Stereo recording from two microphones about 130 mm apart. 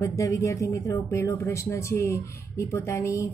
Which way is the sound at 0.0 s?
25° left (ahead or behind).